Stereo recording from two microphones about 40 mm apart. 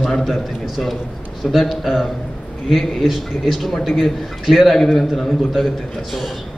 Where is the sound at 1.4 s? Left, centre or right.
Centre.